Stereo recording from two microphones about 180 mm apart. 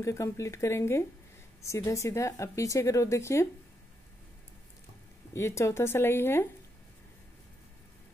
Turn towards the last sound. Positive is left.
turn(degrees=15)  # may be behind; listen again after turning